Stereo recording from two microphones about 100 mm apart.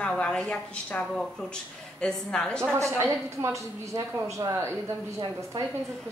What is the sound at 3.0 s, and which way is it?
A woman's voice, 30° right (ahead or behind).